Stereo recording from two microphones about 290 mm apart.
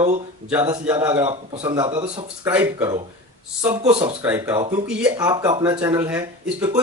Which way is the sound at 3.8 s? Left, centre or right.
Right.